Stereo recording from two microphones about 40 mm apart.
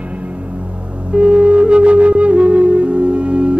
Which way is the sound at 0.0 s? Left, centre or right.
Right.